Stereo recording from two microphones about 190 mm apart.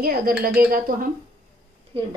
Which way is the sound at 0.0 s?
50° right (ahead or behind).